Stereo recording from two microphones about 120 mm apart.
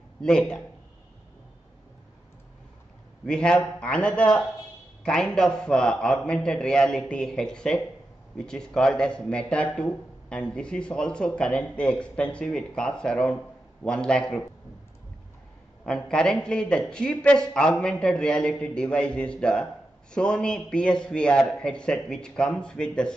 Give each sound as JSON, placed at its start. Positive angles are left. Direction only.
{"t": 0.2, "sound": "speech", "side_deg": 5}
{"t": 3.3, "sound": "speech", "side_deg": 5}
{"t": 15.8, "sound": "speech", "side_deg": 5}